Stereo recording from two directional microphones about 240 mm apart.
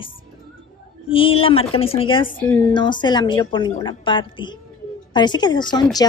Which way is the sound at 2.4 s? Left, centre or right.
Centre.